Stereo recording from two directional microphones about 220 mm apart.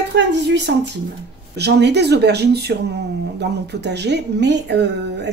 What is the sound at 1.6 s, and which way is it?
Speech, 50° right (ahead or behind).